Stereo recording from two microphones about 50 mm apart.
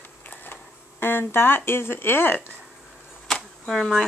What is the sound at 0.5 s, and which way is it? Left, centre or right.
Speech, left.